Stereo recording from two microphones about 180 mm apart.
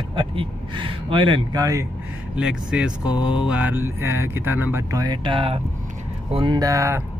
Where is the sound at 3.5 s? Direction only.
10° right (ahead or behind).